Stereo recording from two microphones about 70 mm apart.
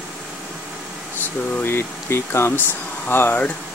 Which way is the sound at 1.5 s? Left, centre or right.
Left.